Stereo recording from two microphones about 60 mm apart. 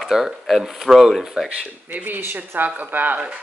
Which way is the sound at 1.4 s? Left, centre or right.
Right.